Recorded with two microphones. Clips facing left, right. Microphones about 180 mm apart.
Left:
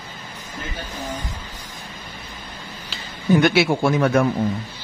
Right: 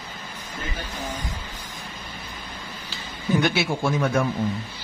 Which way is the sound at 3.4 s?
70° left (ahead or behind).